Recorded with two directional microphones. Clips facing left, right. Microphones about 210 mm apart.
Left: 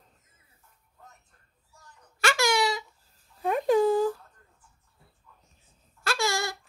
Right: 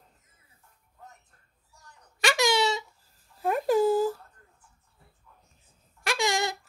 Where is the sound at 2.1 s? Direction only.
20° right (ahead or behind).